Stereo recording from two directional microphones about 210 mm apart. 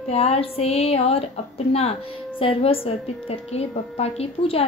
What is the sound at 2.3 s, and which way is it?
A woman's voice, 25° left (ahead or behind).